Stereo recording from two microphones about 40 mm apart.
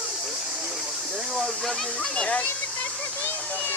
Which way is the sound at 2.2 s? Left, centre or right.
Left.